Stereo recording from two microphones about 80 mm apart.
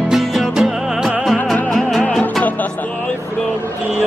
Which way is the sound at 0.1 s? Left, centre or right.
Centre.